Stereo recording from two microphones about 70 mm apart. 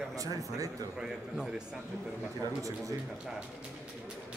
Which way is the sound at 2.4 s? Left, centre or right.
Right.